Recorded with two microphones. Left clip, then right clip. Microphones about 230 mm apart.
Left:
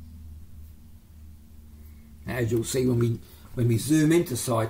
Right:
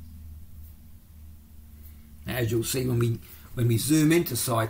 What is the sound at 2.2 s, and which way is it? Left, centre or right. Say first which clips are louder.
Speech: left 1 dB; right.